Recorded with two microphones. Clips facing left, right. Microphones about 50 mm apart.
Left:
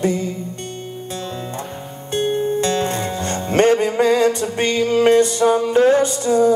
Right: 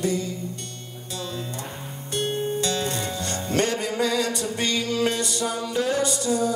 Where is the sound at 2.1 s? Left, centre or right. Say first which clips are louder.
Left 7 dB; left.